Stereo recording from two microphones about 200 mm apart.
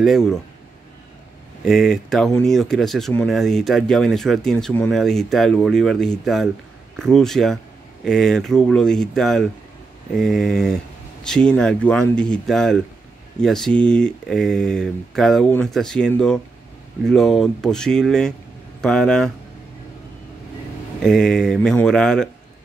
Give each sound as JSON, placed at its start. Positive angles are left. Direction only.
{"t": 0.0, "sound": "speech", "side_deg": 0}
{"t": 1.6, "sound": "speech", "side_deg": 0}
{"t": 21.0, "sound": "speech", "side_deg": 5}